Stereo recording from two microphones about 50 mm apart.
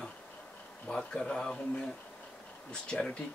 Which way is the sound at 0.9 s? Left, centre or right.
Centre.